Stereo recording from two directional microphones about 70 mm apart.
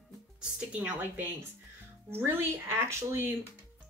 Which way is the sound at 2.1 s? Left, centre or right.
Right.